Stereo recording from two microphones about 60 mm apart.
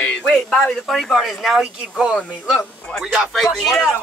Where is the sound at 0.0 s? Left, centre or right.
Centre.